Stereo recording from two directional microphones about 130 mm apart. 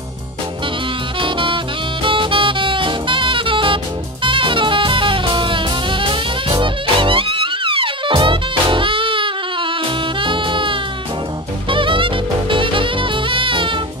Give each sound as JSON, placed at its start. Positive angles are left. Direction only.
{"t": 1.2, "sound": "saxophone", "side_deg": -40}
{"t": 10.2, "sound": "music", "side_deg": -40}